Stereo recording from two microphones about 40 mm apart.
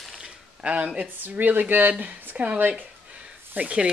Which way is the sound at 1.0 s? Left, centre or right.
Right.